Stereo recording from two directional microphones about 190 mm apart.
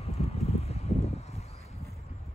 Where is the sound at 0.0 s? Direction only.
35° left (ahead or behind).